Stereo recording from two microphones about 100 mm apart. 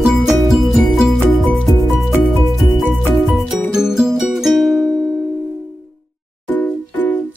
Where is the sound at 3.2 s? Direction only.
5° right (ahead or behind).